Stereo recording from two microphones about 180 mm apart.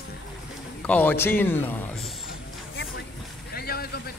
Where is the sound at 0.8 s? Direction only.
10° left (ahead or behind).